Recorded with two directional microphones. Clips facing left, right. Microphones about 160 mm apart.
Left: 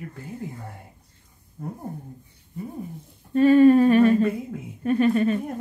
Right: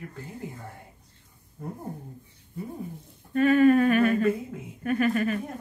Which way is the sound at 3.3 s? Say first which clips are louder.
Left 4 dB; 30° left (ahead or behind).